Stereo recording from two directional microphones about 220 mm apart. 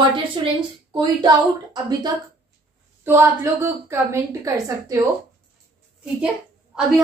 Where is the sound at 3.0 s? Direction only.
10° right (ahead or behind).